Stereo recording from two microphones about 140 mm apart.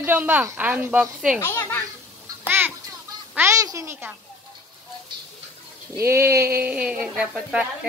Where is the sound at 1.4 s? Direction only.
15° left (ahead or behind).